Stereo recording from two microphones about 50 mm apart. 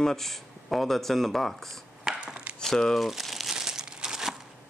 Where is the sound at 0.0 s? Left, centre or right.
Centre.